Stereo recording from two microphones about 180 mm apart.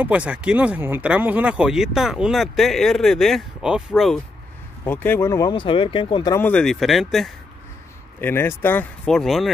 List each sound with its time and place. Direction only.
0.0 s speech: 5° right (ahead or behind)
4.8 s speech: 10° left (ahead or behind); by 6.3 s 25° left (ahead or behind)
6.3 s speech: 10° left (ahead or behind)
8.2 s speech: 10° left (ahead or behind)